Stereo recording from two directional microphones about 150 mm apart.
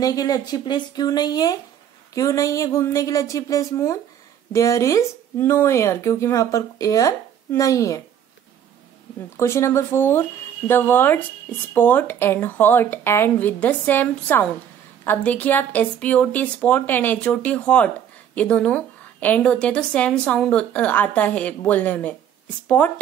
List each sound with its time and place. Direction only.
0.0 s speech: 25° left (ahead or behind)
9.4 s a woman's voice: 20° left (ahead or behind)